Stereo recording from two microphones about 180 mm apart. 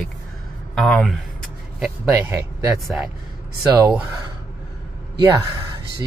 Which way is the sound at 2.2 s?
15° right (ahead or behind).